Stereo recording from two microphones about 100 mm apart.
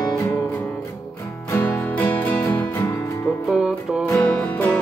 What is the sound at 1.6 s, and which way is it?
Music, 15° left (ahead or behind).